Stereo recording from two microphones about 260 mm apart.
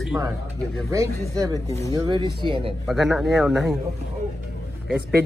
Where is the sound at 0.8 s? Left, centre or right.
Centre.